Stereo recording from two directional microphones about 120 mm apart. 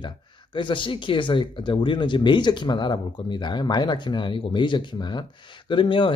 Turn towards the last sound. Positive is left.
turn(degrees=45)  # may be behind; listen again after turning